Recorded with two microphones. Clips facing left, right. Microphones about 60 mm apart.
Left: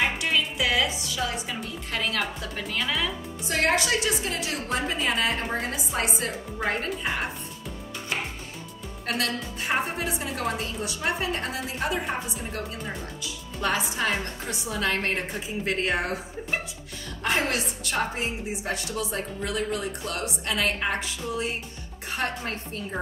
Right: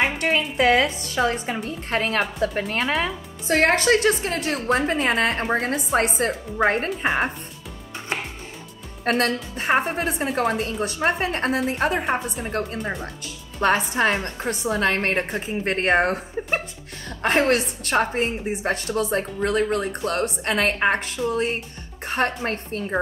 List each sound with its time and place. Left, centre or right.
0.0 s music: right
0.6 s a woman's voice: right
9.0 s a woman's voice: right